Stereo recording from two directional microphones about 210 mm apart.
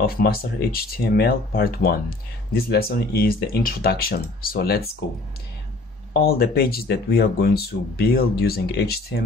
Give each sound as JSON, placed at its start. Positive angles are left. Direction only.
{"t": 0.0, "sound": "speech", "side_deg": 45}
{"t": 6.1, "sound": "speech", "side_deg": 45}